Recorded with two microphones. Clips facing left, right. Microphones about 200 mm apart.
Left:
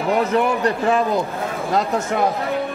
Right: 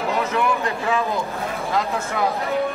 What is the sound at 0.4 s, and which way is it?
Speech, 45° left (ahead or behind).